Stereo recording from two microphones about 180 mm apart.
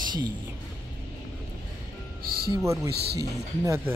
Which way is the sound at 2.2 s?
55° right (ahead or behind).